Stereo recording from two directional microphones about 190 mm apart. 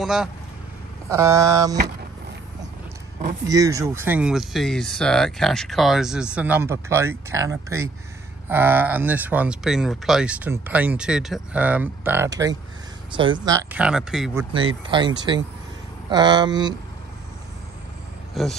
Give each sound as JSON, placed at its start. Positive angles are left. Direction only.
{"t": 0.0, "sound": "speech", "side_deg": -5}
{"t": 1.0, "sound": "speech", "side_deg": -15}
{"t": 3.4, "sound": "speech", "side_deg": -15}
{"t": 14.5, "sound": "speech", "side_deg": -25}
{"t": 18.3, "sound": "a man's voice", "side_deg": 0}